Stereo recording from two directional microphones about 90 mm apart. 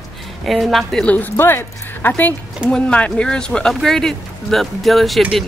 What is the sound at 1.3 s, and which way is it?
Speech, 25° left (ahead or behind).